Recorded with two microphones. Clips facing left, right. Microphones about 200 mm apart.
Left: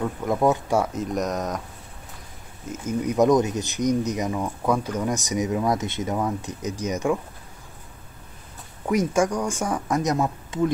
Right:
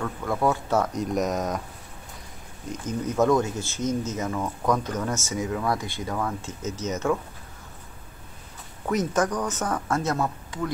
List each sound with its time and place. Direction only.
0.0 s speech: 20° left (ahead or behind); by 1.6 s centre (ahead or behind)
2.7 s speech: 10° left (ahead or behind)
8.8 s speech: 10° left (ahead or behind)